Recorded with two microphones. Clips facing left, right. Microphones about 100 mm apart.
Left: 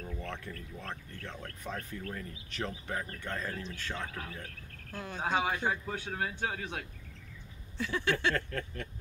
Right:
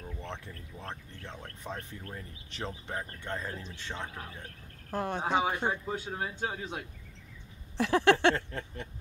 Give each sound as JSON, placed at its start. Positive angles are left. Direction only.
{"t": 0.0, "sound": "speech", "side_deg": -20}
{"t": 4.9, "sound": "speech", "side_deg": -55}
{"t": 5.2, "sound": "speech", "side_deg": -25}
{"t": 7.7, "sound": "a sound", "side_deg": -70}
{"t": 8.4, "sound": "speech", "side_deg": -20}